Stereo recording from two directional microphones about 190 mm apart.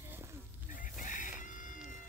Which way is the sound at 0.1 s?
15° right (ahead or behind).